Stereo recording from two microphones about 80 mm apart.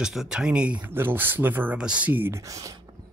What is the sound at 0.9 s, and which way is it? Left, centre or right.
Speech, right.